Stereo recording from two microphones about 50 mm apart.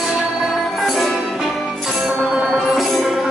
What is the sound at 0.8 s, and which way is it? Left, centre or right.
Music, centre.